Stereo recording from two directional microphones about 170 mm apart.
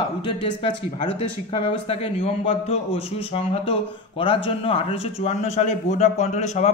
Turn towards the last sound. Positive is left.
turn(degrees=45)  # may be behind; listen again after turning